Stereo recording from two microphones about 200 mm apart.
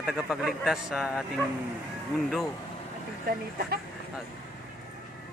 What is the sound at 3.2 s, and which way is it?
Speech, 50° right (ahead or behind).